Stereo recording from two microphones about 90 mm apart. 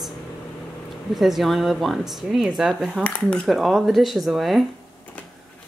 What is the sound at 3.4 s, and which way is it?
Speech, centre (ahead or behind).